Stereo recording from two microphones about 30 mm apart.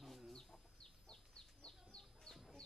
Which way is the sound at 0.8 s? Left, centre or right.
Left.